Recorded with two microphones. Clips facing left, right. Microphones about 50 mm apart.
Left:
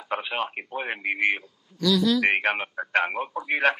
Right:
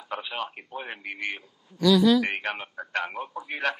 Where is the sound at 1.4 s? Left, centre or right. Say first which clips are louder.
Right 3 dB; centre.